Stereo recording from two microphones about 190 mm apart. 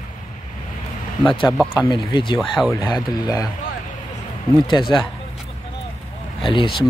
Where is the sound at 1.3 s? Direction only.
25° left (ahead or behind).